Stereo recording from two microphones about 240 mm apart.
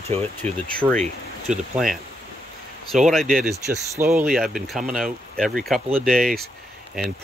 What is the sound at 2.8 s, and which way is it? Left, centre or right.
Speech, centre.